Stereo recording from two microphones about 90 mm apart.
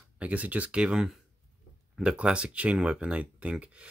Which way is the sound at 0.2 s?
15° right (ahead or behind).